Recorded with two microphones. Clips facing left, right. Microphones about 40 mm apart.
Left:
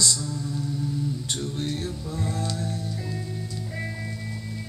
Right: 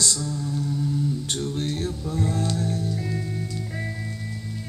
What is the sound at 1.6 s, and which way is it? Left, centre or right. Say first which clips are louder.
Music: right 2 dB; right.